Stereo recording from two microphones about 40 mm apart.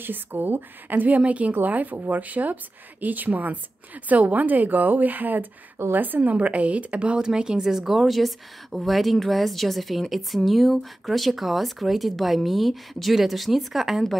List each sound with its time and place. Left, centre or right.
0.0 s speech: right
6.3 s speech: right
7.2 s a woman's voice: centre